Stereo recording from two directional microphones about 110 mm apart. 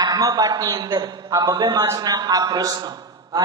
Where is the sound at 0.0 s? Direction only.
35° right (ahead or behind).